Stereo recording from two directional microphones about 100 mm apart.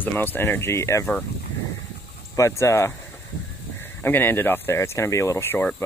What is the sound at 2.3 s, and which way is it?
Speech, 30° left (ahead or behind).